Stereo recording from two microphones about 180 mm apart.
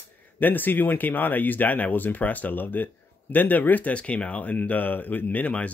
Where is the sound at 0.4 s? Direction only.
10° left (ahead or behind).